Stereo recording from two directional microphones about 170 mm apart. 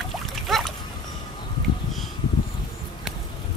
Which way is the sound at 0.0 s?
Centre (ahead or behind).